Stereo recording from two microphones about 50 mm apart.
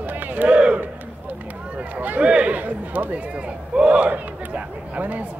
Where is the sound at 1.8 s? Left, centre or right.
Right.